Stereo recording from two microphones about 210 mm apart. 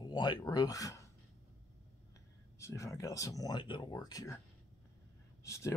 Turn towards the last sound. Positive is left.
turn(degrees=15)  # may be behind; listen again after turning